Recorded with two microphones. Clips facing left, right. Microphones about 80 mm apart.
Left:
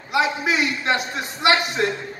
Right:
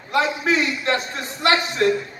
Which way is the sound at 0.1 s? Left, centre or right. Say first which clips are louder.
Right 1 dB; centre.